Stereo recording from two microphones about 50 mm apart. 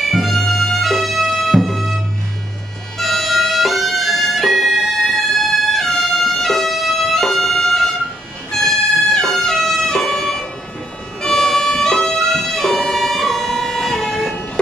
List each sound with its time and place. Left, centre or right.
0.0 s bagpipes: centre
3.0 s music: centre